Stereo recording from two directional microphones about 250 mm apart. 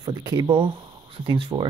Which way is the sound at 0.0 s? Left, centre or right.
Centre.